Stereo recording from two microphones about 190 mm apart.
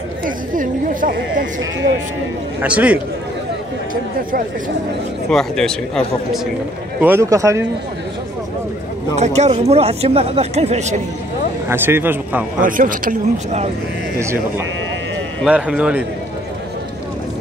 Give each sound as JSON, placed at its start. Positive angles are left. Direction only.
{"t": 0.6, "sound": "speech", "side_deg": -45}
{"t": 2.6, "sound": "speech", "side_deg": -5}
{"t": 5.3, "sound": "speech", "side_deg": 5}
{"t": 7.0, "sound": "speech", "side_deg": -10}
{"t": 9.1, "sound": "speech", "side_deg": -35}
{"t": 11.7, "sound": "speech", "side_deg": -10}
{"t": 12.5, "sound": "speech", "side_deg": -45}
{"t": 15.4, "sound": "speech", "side_deg": -5}